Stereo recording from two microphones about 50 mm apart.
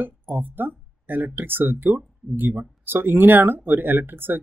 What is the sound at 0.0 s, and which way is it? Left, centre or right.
Speech, right.